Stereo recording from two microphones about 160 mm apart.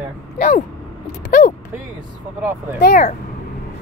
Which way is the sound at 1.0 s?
50° left (ahead or behind).